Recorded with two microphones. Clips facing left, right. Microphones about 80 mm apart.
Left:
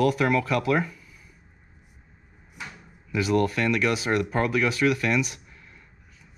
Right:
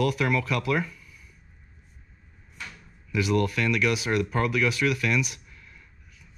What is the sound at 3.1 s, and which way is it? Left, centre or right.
Speech, left.